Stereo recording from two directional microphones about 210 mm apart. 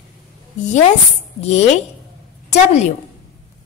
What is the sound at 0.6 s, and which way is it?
A woman's voice, 35° left (ahead or behind).